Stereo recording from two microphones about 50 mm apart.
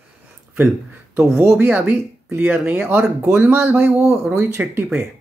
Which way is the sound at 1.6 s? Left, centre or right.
Right.